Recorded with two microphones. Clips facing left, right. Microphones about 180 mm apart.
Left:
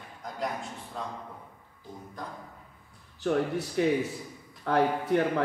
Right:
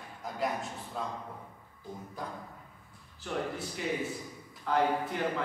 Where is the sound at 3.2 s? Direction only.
70° left (ahead or behind).